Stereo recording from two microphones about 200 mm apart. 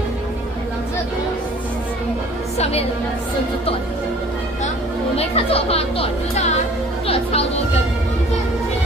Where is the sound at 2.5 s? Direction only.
30° left (ahead or behind).